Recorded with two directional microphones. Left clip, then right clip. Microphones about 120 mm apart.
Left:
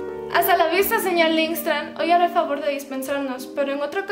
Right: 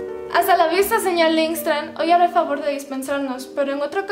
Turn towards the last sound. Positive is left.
turn(degrees=-5)  # may be behind; listen again after turning